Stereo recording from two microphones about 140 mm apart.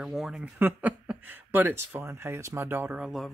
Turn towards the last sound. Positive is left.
turn(degrees=0)  # may be behind; listen again after turning